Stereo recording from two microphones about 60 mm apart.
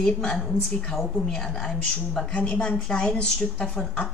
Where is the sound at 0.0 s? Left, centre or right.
Centre.